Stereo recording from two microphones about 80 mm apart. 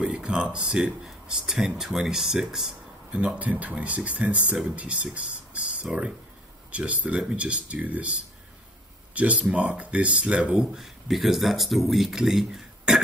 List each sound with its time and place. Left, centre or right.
0.0 s speech: centre
3.1 s speech: centre